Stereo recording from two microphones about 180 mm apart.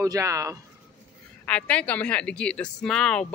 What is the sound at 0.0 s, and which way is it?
Speech, 15° right (ahead or behind).